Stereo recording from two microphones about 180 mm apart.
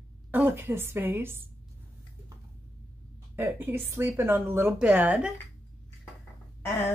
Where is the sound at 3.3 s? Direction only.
10° right (ahead or behind).